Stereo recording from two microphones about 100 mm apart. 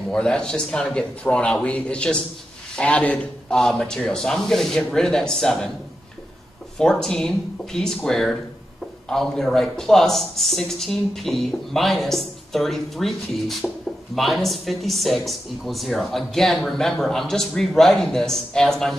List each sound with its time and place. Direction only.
0.1 s speech: 10° left (ahead or behind)
6.8 s speech: 5° left (ahead or behind)